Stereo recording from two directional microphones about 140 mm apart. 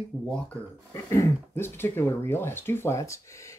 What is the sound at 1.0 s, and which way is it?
Speech, 20° left (ahead or behind).